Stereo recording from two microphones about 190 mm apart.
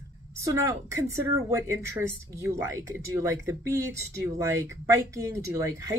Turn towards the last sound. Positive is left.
turn(degrees=-15)  # may be behind; listen again after turning